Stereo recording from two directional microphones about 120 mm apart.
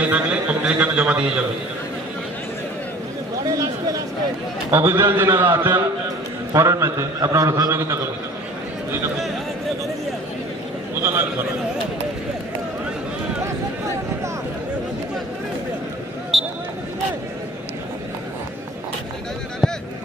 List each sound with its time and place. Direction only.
0.0 s a man's voice: 10° right (ahead or behind)
4.6 s a man's voice: 20° right (ahead or behind)
11.0 s a man's voice: 20° right (ahead or behind)
16.3 s a sound: centre (ahead or behind)